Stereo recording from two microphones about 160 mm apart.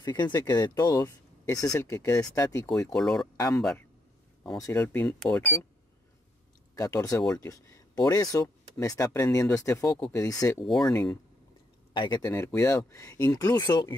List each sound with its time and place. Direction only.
0.0 s speech: 25° left (ahead or behind)
2.9 s speech: centre (ahead or behind)
4.6 s speech: 20° left (ahead or behind)
6.7 s speech: 20° left (ahead or behind)
10.6 s speech: centre (ahead or behind)
11.9 s speech: 25° left (ahead or behind)